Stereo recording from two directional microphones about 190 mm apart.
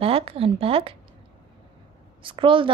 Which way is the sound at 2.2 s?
25° right (ahead or behind).